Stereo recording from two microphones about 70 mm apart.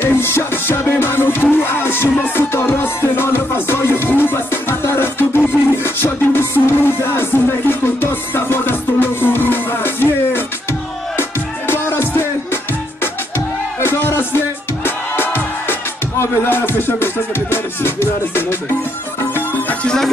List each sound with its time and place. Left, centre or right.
0.0 s music: left
13.7 s music: left
16.2 s music: left
19.8 s music: centre